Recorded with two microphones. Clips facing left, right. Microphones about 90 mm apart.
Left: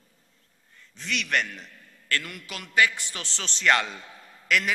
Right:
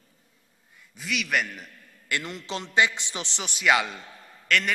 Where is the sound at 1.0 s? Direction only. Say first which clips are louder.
Even; 5° right (ahead or behind).